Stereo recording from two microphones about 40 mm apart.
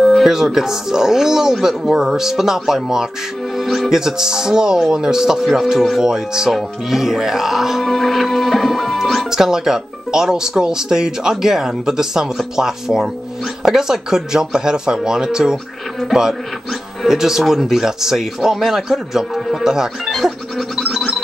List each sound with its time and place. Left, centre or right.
0.2 s speech: centre
3.5 s music: centre
3.9 s speech: centre
7.8 s speech: centre
19.6 s music: centre